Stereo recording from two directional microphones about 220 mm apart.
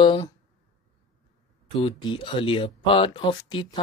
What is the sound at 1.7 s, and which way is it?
Speech, 20° left (ahead or behind).